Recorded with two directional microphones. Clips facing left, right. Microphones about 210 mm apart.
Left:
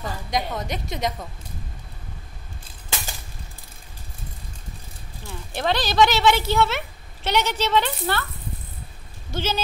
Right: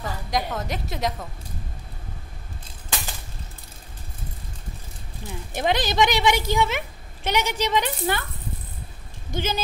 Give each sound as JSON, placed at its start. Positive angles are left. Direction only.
{"t": 0.0, "sound": "a woman's voice", "side_deg": 0}
{"t": 5.5, "sound": "a woman's voice", "side_deg": -15}
{"t": 9.3, "sound": "a woman's voice", "side_deg": -15}